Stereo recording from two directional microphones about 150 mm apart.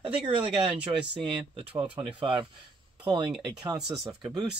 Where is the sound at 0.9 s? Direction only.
40° right (ahead or behind).